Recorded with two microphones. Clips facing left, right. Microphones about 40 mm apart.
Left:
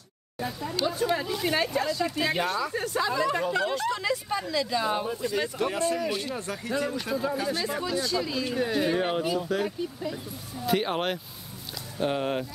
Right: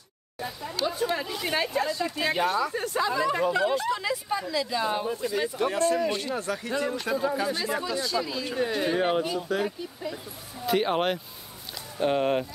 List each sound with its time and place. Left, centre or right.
0.4 s speech: centre
6.3 s speech: right
7.4 s speech: centre